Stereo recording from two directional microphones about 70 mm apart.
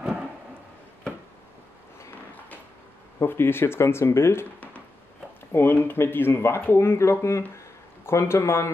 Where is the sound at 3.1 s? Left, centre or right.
Left.